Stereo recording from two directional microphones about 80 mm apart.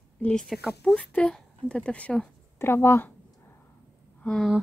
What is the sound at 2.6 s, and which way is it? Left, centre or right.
Speech, left.